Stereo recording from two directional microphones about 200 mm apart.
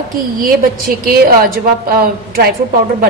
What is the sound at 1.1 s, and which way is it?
A woman's voice, 45° right (ahead or behind).